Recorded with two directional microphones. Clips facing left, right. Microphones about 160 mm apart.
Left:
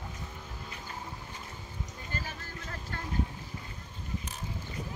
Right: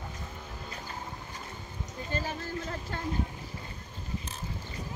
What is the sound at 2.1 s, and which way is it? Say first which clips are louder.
Speech: right 6 dB; 25° right (ahead or behind).